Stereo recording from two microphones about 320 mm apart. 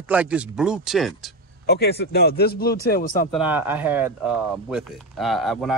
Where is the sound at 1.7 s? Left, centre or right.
Left.